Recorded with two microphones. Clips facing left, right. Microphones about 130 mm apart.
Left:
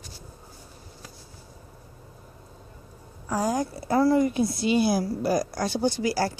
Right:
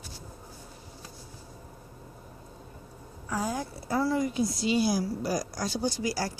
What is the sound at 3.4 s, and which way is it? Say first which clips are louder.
Speech: left 6 dB; 75° left (ahead or behind).